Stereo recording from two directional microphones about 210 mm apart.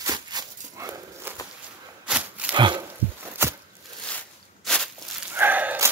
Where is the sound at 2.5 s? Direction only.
20° right (ahead or behind).